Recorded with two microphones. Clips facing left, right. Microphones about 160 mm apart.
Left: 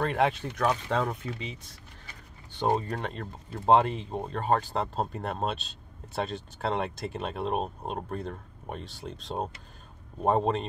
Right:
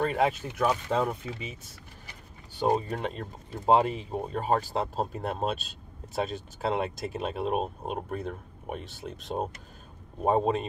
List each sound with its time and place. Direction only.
0.0 s speech: 5° right (ahead or behind)